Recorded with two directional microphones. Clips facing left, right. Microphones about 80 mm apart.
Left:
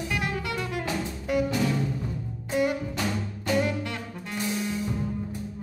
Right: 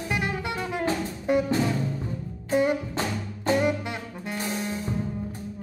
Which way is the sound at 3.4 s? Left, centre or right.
Right.